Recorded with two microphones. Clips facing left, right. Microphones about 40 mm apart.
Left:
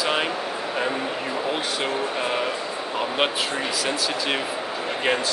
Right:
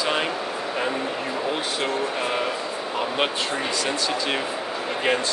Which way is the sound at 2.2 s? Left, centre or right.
Centre.